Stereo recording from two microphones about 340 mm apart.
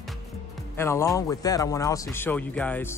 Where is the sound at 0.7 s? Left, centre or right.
Centre.